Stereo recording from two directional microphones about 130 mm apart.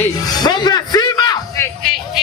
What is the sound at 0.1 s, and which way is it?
Music, 30° left (ahead or behind).